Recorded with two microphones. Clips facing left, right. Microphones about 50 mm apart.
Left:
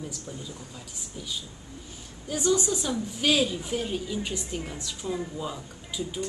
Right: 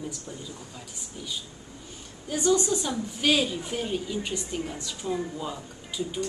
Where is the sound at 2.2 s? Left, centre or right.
Centre.